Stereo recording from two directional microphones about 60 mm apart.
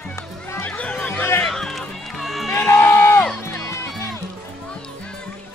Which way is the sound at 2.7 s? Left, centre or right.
Left.